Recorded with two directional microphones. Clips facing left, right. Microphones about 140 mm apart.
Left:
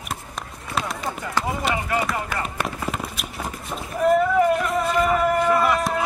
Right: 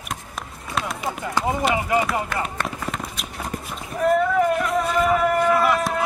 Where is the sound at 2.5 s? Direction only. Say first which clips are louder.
Left 1 dB; 5° left (ahead or behind).